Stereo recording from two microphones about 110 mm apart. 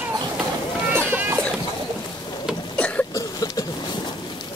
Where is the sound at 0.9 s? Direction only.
20° right (ahead or behind).